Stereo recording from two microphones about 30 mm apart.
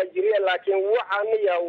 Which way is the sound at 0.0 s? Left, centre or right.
Centre.